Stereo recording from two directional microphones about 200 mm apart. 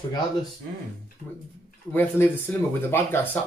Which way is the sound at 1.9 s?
10° left (ahead or behind).